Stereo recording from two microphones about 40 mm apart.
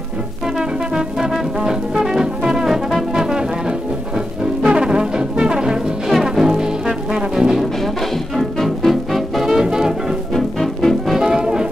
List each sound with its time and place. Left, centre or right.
0.6 s brass instrument: centre
3.3 s music: centre
4.6 s brass instrument: centre
6.0 s brass instrument: centre
8.6 s music: centre
9.5 s music: centre
10.3 s music: centre
11.1 s music: centre